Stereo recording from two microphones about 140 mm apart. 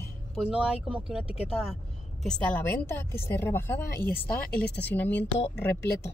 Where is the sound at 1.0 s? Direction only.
5° right (ahead or behind).